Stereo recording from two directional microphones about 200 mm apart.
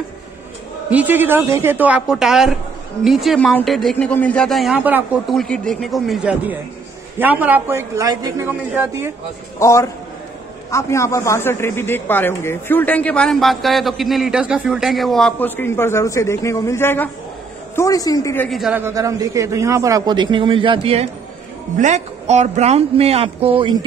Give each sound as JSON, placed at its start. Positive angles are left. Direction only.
{"t": 0.8, "sound": "a man's voice", "side_deg": -10}
{"t": 5.3, "sound": "a man's voice", "side_deg": 5}
{"t": 9.6, "sound": "a man's voice", "side_deg": 15}
{"t": 18.6, "sound": "a man's voice", "side_deg": -10}